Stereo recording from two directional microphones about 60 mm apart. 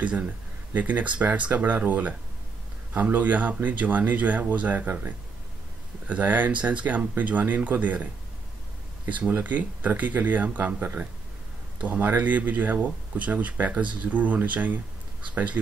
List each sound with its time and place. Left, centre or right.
0.0 s speech: right
9.3 s speech: right